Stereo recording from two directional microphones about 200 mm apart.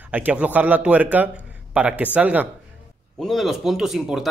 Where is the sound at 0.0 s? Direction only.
10° right (ahead or behind).